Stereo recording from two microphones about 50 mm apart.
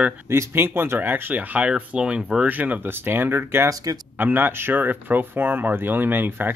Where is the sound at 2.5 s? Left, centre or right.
Right.